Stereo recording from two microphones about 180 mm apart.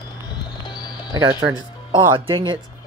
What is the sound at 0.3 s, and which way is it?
Music, 25° left (ahead or behind).